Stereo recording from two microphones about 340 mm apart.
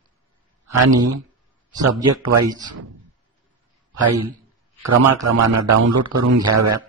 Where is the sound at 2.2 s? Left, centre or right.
Right.